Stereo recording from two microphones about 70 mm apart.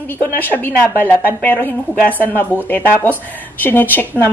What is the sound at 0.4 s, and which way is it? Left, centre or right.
A woman's voice, left.